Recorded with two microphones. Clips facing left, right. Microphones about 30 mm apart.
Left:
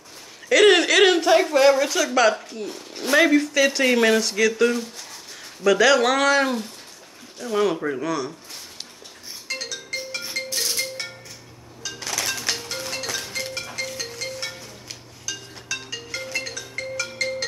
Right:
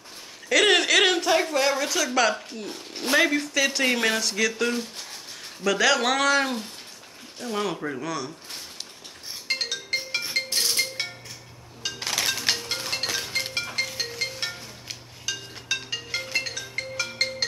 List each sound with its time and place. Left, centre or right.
0.5 s a sound: centre
2.7 s speech: right
3.2 s speech: centre
9.5 s music: right
11.8 s music: right
12.3 s music: centre
12.8 s music: right